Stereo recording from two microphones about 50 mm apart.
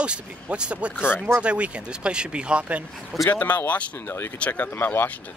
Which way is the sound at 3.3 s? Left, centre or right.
Left.